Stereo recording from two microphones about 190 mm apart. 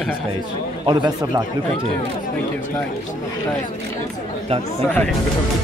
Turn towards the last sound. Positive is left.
turn(degrees=5)  # may be behind; listen again after turning